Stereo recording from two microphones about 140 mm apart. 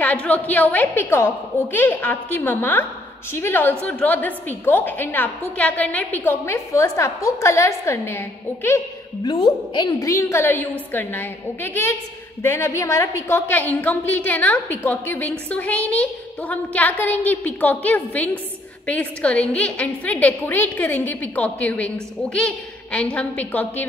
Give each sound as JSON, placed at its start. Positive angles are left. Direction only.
{"t": 0.0, "sound": "a woman's voice", "side_deg": 10}
{"t": 9.2, "sound": "a woman's voice", "side_deg": 30}